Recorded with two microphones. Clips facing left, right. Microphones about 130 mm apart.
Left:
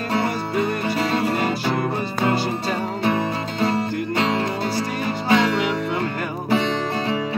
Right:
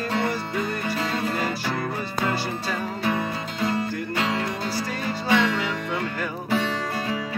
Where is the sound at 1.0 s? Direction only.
30° left (ahead or behind).